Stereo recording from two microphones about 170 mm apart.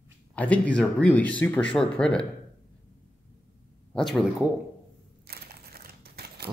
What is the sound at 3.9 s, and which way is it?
Speech, centre (ahead or behind).